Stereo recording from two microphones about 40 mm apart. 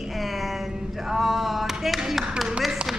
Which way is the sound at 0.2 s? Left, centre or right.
Centre.